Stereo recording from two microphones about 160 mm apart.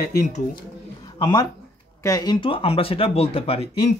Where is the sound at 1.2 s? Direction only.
25° left (ahead or behind).